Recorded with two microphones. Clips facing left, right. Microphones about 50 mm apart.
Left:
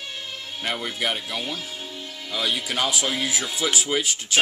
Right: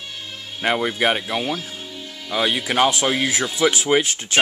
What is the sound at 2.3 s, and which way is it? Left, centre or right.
Speech, right.